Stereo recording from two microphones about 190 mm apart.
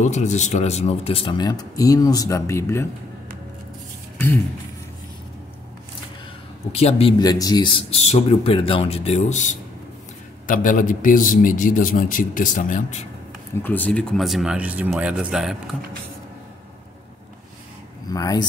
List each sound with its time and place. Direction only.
0.0 s speech: 40° left (ahead or behind); by 2.9 s 15° left (ahead or behind)
6.7 s a man's voice: 30° left (ahead or behind)
13.6 s speech: 10° left (ahead or behind)
18.1 s speech: 20° left (ahead or behind)